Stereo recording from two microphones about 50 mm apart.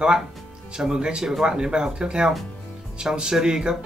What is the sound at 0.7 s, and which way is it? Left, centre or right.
Speech, centre.